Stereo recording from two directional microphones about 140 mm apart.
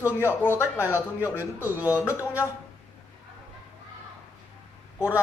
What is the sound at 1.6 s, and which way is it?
Speech, 10° right (ahead or behind).